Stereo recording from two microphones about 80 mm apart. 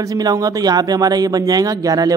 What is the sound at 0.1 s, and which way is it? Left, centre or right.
Speech, right.